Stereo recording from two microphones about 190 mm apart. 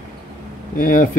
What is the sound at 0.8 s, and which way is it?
Speech, 45° left (ahead or behind).